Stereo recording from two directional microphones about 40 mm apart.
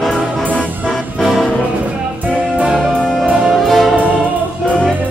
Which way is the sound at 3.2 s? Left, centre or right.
Right.